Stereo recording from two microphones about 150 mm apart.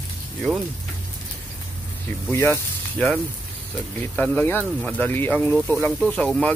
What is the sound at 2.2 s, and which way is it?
Speech, 15° left (ahead or behind).